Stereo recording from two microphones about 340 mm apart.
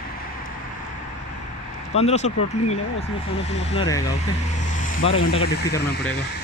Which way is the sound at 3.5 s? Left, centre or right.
Centre.